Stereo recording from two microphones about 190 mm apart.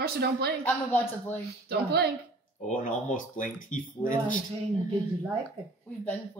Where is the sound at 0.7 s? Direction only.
10° left (ahead or behind).